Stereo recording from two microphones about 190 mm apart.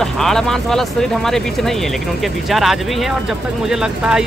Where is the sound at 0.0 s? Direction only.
Centre (ahead or behind).